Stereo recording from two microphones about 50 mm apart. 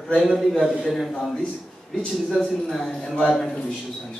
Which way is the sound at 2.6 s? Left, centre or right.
Centre.